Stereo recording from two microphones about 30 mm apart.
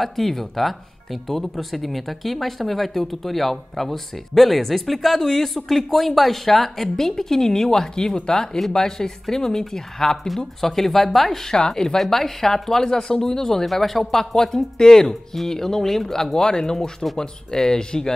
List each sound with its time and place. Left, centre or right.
0.0 s speech: centre
11.7 s speech: centre
14.3 s speech: centre